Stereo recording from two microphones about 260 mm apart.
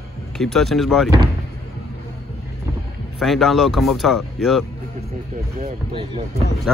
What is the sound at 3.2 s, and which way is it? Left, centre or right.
Speech, centre.